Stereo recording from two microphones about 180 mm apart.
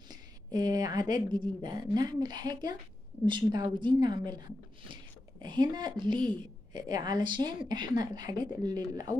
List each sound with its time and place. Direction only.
0.1 s a woman's voice: 20° right (ahead or behind)
5.4 s a woman's voice: 25° right (ahead or behind)